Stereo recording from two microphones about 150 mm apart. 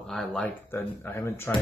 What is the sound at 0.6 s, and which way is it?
Speech, 15° left (ahead or behind).